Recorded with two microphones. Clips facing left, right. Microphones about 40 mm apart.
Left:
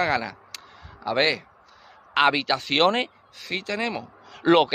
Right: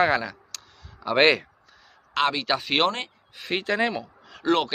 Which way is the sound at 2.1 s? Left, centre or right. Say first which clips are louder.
Left 4 dB; centre.